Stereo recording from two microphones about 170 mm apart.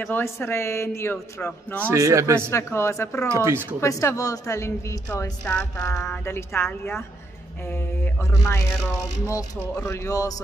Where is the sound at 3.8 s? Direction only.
20° left (ahead or behind).